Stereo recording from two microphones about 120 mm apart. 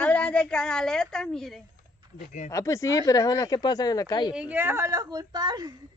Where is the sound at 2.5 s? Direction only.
25° left (ahead or behind).